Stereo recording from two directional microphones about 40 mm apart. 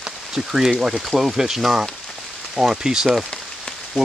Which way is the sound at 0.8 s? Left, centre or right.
Centre.